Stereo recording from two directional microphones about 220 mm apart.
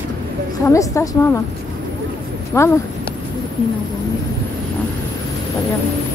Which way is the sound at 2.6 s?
10° left (ahead or behind).